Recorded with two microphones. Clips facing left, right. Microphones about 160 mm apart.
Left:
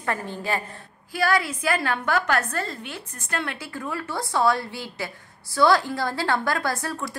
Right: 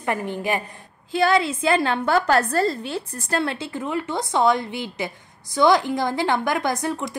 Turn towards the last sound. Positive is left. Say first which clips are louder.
# right 4 dB
turn(degrees=-20)  # may be behind; listen again after turning